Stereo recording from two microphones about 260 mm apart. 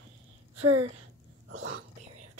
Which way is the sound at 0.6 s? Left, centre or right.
Right.